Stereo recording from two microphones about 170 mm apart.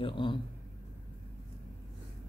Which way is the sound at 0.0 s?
30° left (ahead or behind).